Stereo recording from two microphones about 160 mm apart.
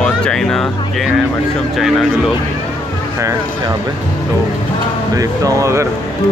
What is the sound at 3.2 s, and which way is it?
Speech, 20° right (ahead or behind).